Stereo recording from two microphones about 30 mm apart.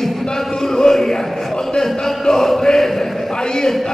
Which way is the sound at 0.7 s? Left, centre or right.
Centre.